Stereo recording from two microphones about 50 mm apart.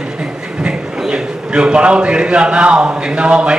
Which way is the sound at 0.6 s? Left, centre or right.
Centre.